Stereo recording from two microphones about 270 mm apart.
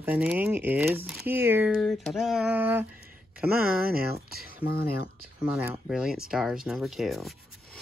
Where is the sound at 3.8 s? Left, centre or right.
Right.